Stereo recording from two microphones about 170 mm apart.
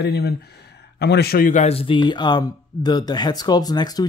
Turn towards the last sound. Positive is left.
turn(degrees=25)  # may be behind; listen again after turning